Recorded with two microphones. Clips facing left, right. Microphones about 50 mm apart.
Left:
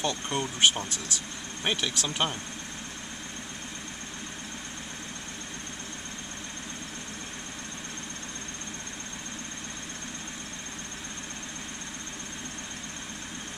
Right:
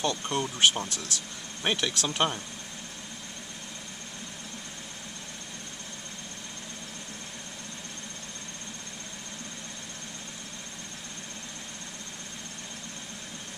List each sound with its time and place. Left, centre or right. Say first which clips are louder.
0.0 s speech: right 1 dB; centre
0.8 s speech: even; left
1.6 s speech: right 1 dB; centre